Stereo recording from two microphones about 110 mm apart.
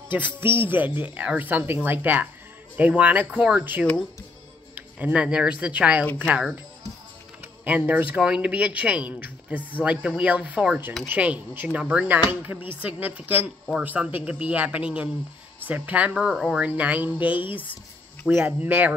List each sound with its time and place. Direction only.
0.1 s a woman's voice: 20° right (ahead or behind)
7.6 s a woman's voice: 15° right (ahead or behind)
16.6 s a woman's voice: 15° right (ahead or behind)
18.4 s a woman's voice: 15° right (ahead or behind)